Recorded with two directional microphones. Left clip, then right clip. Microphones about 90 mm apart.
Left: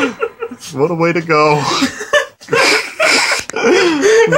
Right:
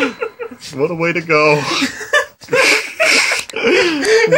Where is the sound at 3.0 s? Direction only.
40° left (ahead or behind).